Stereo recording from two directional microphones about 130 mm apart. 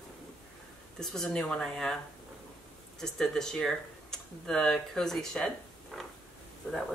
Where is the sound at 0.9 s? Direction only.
5° left (ahead or behind).